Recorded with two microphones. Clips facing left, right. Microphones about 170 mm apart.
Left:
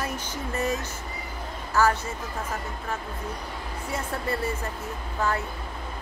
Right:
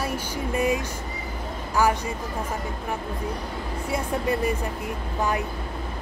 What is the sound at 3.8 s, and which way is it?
Speech, 15° right (ahead or behind).